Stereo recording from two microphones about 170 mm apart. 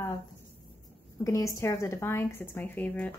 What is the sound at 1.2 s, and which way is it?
Speech, 20° left (ahead or behind).